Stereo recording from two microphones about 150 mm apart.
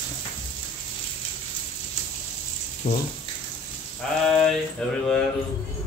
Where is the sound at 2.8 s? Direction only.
55° left (ahead or behind).